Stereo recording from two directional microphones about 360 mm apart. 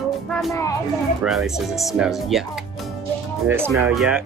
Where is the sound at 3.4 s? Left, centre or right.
Centre.